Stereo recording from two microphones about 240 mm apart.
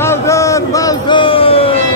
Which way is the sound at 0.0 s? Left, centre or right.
Centre.